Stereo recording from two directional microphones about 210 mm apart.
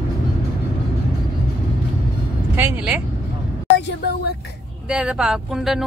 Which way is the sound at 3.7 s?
55° left (ahead or behind).